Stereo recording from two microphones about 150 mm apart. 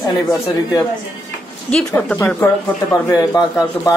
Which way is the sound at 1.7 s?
10° left (ahead or behind).